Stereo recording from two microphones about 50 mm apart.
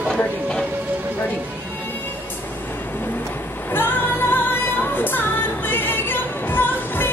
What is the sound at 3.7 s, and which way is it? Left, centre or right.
Music, left.